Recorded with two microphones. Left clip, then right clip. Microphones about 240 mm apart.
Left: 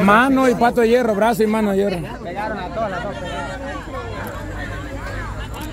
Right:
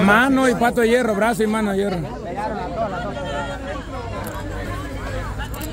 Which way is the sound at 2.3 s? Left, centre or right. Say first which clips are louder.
Left 1 dB; left.